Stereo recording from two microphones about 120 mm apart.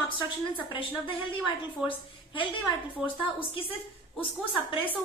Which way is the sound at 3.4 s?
50° left (ahead or behind).